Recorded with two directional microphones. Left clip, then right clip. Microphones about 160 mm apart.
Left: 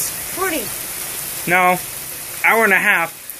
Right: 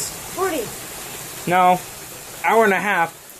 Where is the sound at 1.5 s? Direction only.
10° right (ahead or behind).